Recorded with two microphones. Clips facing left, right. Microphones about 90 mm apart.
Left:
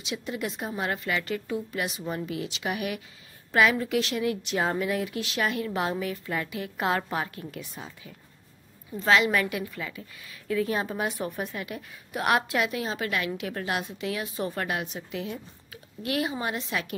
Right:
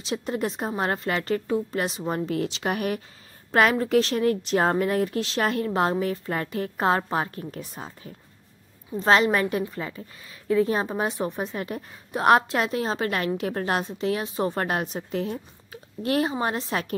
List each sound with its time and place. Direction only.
0.0 s a woman's voice: 40° right (ahead or behind)
11.5 s a woman's voice: 35° right (ahead or behind)